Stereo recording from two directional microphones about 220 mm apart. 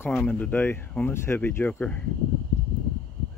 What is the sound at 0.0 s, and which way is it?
Speech, 5° left (ahead or behind).